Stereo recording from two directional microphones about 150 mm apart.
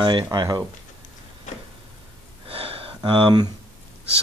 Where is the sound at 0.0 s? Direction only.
30° right (ahead or behind).